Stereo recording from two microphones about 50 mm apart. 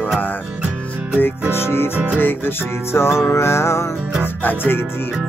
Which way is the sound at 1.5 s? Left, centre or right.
Left.